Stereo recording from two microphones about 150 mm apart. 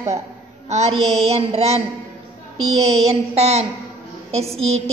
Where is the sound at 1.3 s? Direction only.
45° right (ahead or behind).